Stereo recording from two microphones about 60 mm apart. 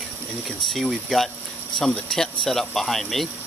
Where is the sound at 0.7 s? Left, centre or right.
Centre.